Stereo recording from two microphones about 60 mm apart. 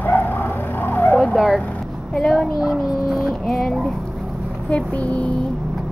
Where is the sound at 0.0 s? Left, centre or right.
Left.